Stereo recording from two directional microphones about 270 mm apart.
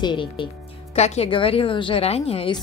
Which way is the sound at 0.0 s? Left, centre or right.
Centre.